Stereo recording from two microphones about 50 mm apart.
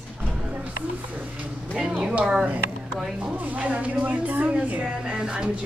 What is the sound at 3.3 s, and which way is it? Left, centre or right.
Speech, right.